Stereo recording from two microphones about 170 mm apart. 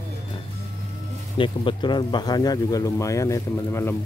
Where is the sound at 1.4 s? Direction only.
30° left (ahead or behind).